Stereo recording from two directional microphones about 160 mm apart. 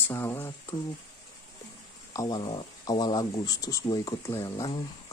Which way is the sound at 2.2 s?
25° left (ahead or behind).